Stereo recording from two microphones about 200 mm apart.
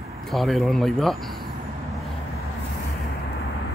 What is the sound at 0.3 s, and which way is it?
Speech, centre (ahead or behind).